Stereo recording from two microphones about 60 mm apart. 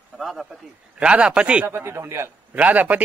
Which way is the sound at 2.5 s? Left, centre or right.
Right.